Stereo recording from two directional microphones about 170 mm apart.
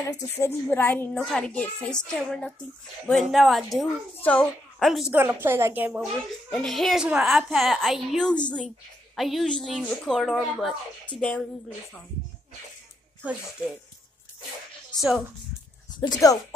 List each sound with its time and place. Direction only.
0.1 s a woman's voice: 15° left (ahead or behind); by 5.1 s centre (ahead or behind)
5.1 s a woman's voice: 10° right (ahead or behind)
6.5 s a woman's voice: centre (ahead or behind)
13.2 s a woman's voice: 10° right (ahead or behind)
15.0 s a woman's voice: centre (ahead or behind)
16.0 s speech: 20° left (ahead or behind)